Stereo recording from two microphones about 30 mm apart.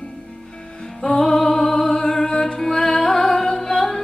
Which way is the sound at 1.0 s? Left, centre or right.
Centre.